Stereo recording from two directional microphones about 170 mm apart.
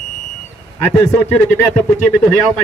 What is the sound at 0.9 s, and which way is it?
Speech, 10° left (ahead or behind).